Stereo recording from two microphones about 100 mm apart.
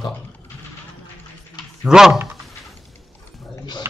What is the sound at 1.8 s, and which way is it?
Speech, 5° right (ahead or behind).